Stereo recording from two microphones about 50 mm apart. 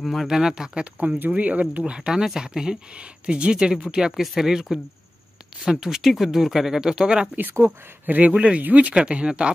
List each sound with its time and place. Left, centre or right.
0.0 s speech: centre
0.3 s speech: centre
0.9 s speech: right
4.2 s speech: centre
4.5 s speech: centre
8.1 s speech: right